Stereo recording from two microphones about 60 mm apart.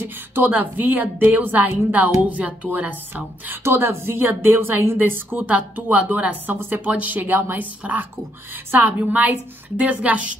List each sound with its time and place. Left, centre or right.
0.0 s a woman's voice: right
3.6 s a woman's voice: right